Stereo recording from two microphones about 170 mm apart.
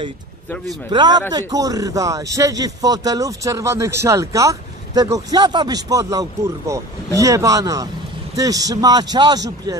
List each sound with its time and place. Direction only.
0.8 s speech: 25° right (ahead or behind)